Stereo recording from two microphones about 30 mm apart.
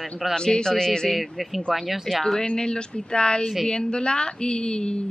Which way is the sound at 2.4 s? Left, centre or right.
Left.